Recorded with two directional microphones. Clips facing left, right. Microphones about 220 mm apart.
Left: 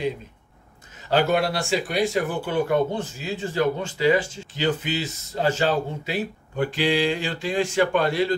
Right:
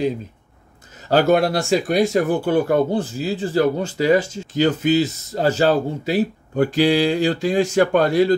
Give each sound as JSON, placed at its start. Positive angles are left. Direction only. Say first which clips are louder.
{"t": 1.0, "sound": "speech", "louder": "right 5 dB", "side_deg": -40}